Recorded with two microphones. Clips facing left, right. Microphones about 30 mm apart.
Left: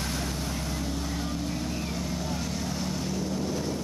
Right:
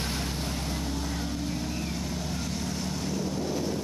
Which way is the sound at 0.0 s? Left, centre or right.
Centre.